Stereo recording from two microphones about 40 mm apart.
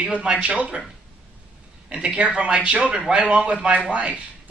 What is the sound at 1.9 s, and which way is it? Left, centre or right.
Speech, right.